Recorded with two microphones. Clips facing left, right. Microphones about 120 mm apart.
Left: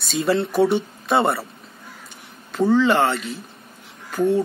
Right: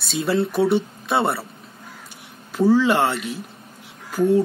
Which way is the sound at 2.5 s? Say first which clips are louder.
Even; 10° right (ahead or behind).